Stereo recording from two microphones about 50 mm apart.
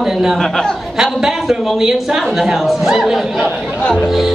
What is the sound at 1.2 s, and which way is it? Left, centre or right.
A woman's voice, centre.